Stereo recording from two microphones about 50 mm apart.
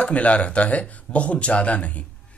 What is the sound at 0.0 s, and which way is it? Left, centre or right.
Speech, left.